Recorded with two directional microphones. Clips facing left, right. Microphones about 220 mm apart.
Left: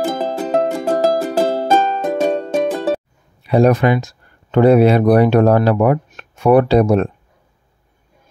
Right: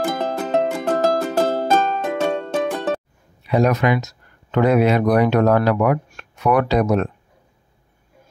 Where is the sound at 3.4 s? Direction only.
30° left (ahead or behind).